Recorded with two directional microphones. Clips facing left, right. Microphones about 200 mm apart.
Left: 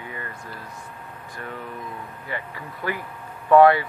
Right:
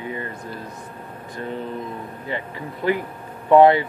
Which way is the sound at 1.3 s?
25° right (ahead or behind).